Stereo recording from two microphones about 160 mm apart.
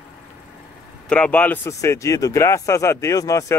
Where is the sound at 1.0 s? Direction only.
5° left (ahead or behind).